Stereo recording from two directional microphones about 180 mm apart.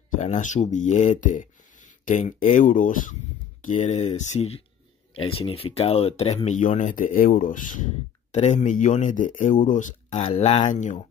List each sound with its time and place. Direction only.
0.2 s speech: 40° left (ahead or behind)